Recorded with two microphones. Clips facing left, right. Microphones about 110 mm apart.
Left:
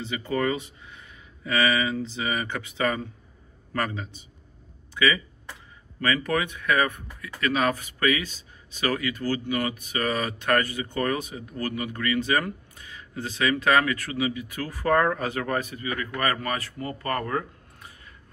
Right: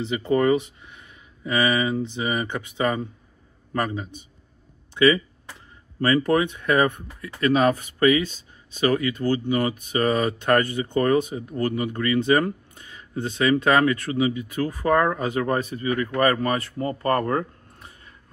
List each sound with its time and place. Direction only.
0.0 s a man's voice: 25° right (ahead or behind)
5.9 s speech: 35° right (ahead or behind)